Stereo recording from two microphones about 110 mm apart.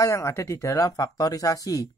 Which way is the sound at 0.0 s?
25° left (ahead or behind).